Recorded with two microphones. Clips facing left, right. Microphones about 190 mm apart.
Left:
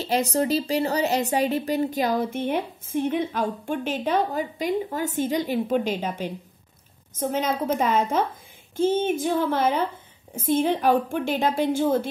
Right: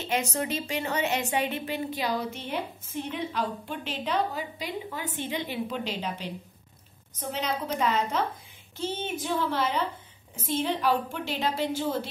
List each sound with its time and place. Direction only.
0.0 s a woman's voice: 35° left (ahead or behind)